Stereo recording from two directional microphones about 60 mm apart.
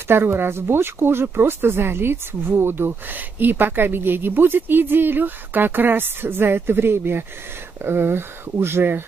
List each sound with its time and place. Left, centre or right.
0.1 s speech: right